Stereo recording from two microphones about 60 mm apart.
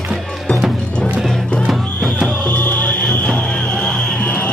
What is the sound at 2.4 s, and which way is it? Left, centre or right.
Music, left.